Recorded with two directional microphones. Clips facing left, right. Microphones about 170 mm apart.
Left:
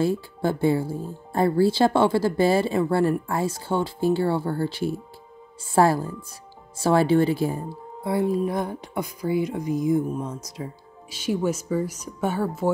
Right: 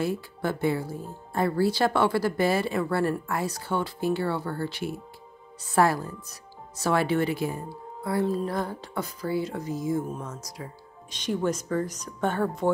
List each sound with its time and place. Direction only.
0.0 s speech: 30° left (ahead or behind)
8.1 s speech: 20° left (ahead or behind)
8.4 s music: 15° left (ahead or behind)
11.1 s music: 5° left (ahead or behind)